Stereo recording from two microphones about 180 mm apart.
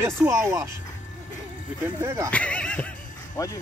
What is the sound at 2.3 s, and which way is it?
Music, 5° left (ahead or behind).